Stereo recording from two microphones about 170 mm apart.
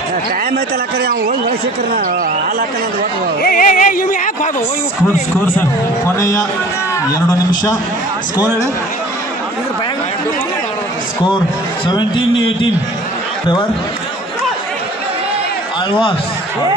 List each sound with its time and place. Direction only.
0.5 s speech: 65° right (ahead or behind)
3.4 s music: 50° left (ahead or behind)
5.6 s a man's voice: 15° left (ahead or behind)
11.9 s a man's voice: 25° left (ahead or behind)